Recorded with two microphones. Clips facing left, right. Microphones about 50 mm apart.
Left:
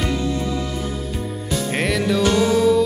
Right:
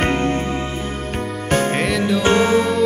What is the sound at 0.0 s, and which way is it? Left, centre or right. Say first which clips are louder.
Music: right 4 dB; right.